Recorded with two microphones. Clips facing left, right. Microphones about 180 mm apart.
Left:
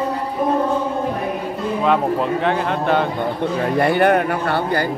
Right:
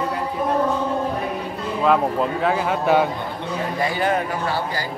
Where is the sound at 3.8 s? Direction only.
60° left (ahead or behind).